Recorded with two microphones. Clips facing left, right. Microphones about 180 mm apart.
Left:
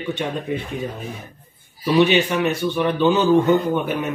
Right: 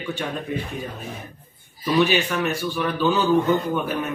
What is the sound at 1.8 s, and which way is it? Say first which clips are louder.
A man's voice: left 4 dB; 10° left (ahead or behind).